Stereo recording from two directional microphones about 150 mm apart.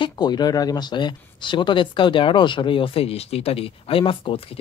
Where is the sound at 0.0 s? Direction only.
30° left (ahead or behind).